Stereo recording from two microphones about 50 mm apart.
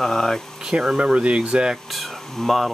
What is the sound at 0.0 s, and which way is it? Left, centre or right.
Speech, centre.